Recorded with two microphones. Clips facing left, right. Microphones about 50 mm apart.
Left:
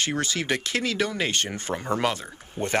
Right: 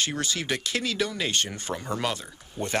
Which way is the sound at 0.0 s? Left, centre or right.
Left.